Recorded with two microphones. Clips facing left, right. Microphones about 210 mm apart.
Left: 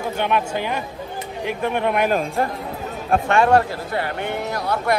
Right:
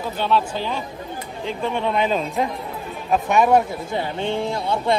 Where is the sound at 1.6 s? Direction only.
60° left (ahead or behind).